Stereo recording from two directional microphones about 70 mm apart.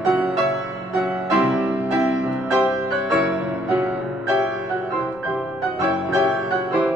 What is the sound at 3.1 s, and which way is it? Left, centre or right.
Music, centre.